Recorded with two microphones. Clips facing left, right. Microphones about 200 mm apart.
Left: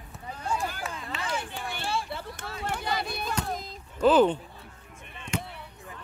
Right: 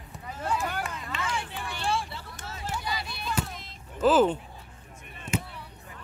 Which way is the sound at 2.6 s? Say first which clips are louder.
Left 3 dB; 55° left (ahead or behind).